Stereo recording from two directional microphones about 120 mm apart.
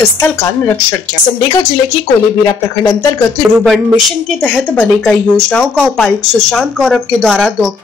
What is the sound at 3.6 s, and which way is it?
Speech, centre (ahead or behind).